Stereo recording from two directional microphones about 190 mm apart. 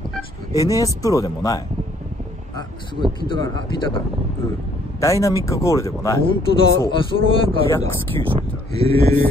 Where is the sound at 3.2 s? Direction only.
25° left (ahead or behind).